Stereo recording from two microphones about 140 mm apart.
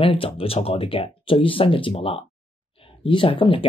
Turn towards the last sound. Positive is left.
turn(degrees=40)  # may be behind; listen again after turning